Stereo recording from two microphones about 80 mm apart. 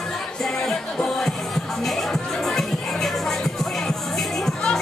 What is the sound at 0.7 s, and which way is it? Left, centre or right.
Music, centre.